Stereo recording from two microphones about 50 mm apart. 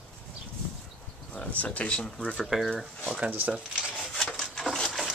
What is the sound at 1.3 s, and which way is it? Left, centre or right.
Speech, left.